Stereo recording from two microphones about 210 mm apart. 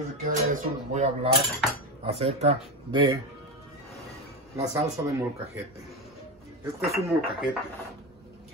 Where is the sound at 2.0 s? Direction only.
30° right (ahead or behind).